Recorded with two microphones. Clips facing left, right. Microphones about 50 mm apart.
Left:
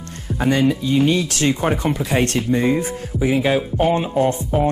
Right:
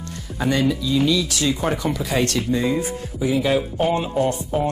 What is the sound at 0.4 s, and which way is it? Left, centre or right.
Speech, left.